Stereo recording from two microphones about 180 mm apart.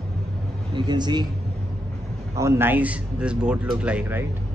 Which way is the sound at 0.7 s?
25° right (ahead or behind).